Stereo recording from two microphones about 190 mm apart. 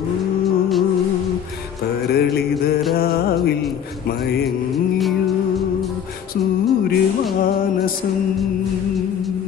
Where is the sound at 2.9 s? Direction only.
55° left (ahead or behind).